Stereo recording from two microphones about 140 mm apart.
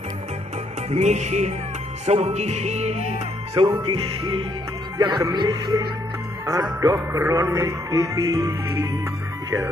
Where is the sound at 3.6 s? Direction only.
30° right (ahead or behind).